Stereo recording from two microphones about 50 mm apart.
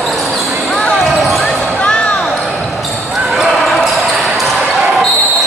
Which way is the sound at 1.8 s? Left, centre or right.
Left.